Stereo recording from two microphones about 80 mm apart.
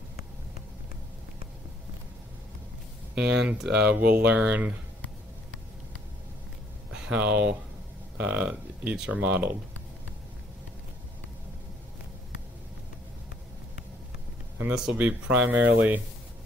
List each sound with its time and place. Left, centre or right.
3.2 s speech: centre
6.9 s speech: centre
14.7 s speech: centre